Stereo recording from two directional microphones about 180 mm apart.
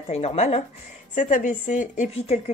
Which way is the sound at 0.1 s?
35° left (ahead or behind).